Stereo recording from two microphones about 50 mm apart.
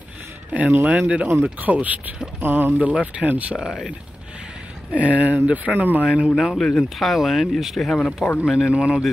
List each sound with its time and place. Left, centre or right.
0.5 s speech: right
2.9 s speech: right
3.5 s speech: centre
4.9 s speech: right
6.3 s speech: centre
6.6 s speech: centre
7.0 s speech: centre
8.7 s speech: centre